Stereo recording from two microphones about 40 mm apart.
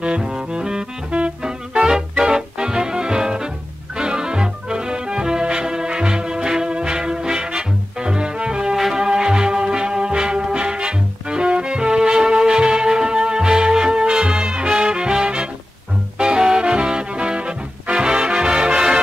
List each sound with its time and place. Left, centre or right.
0.0 s music: right